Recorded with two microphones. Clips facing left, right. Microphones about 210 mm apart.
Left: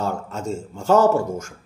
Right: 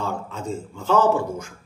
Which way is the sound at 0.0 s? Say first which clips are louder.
Left 3 dB; 45° left (ahead or behind).